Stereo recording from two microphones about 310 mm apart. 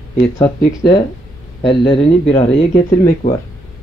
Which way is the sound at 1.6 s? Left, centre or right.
Centre.